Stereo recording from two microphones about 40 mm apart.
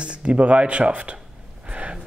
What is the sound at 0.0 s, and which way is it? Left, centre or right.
A man's voice, right.